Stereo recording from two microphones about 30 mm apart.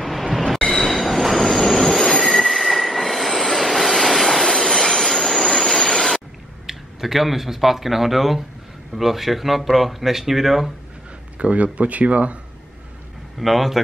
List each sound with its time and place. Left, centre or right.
0.0 s train: centre
2.2 s train wheels squealing: centre
6.7 s speech: centre
11.3 s speech: right
13.4 s speech: centre